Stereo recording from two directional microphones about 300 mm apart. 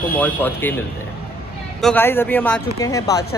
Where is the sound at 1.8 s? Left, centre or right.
Centre.